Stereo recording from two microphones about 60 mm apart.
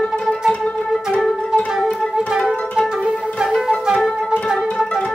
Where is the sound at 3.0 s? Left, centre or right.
Centre.